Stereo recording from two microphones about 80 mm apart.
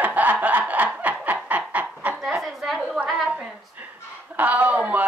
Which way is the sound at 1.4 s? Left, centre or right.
Centre.